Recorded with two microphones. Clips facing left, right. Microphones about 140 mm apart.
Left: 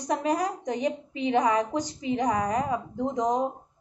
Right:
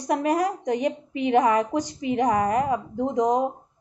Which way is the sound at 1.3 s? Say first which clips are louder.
Right 4 dB; 10° right (ahead or behind).